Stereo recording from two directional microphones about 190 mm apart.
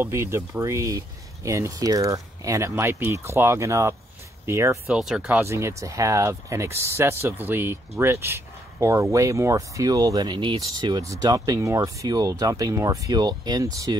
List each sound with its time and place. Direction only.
0.0 s speech: 15° right (ahead or behind)
4.8 s speech: 5° right (ahead or behind); by 13.9 s 20° right (ahead or behind)